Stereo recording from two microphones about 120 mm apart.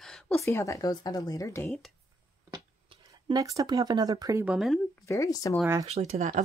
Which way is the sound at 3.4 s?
30° right (ahead or behind).